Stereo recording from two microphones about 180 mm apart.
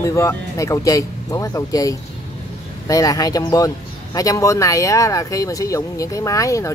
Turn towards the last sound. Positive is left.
turn(degrees=15)  # may be behind; listen again after turning